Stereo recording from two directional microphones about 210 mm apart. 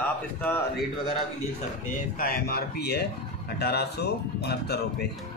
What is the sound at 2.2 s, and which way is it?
Speech, 45° left (ahead or behind).